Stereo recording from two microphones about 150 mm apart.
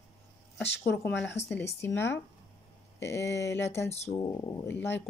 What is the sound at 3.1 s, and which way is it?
Speech, 15° left (ahead or behind).